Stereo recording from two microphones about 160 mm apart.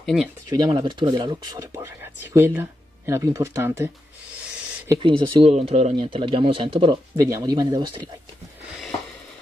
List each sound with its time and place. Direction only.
0.0 s speech: centre (ahead or behind)
0.5 s speech: 25° right (ahead or behind)
2.3 s speech: 15° right (ahead or behind)
4.8 s speech: 30° right (ahead or behind)
7.2 s speech: 20° right (ahead or behind)